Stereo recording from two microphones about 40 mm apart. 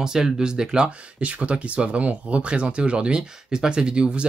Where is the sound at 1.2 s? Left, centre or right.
Right.